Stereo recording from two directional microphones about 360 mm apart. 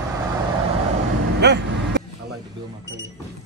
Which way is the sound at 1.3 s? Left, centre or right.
Right.